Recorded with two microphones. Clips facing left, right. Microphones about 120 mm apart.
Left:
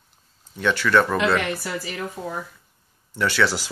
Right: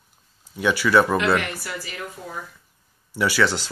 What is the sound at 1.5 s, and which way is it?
Speech, 25° left (ahead or behind).